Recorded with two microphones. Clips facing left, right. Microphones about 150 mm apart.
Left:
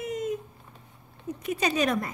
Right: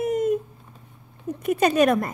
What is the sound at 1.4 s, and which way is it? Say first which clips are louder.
Speech: right 8 dB; 50° right (ahead or behind).